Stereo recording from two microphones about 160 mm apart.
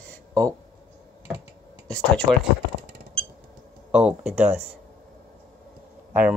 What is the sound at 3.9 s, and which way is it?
Speech, 5° right (ahead or behind).